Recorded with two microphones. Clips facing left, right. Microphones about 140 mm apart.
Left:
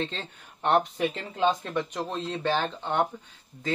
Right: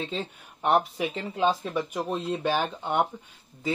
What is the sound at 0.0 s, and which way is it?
Speech, 10° right (ahead or behind).